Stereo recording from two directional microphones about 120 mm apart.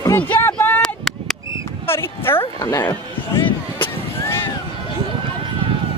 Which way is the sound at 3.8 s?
20° left (ahead or behind).